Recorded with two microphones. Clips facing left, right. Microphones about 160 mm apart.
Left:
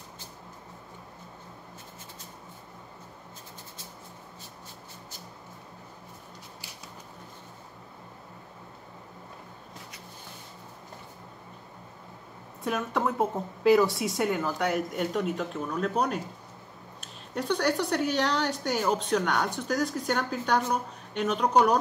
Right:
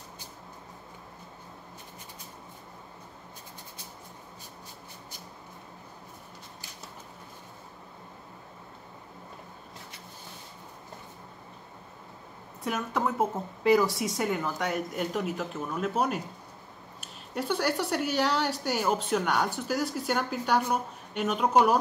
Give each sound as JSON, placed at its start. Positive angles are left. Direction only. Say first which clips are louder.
{"t": 12.6, "sound": "a woman's voice", "louder": "left 1 dB", "side_deg": 0}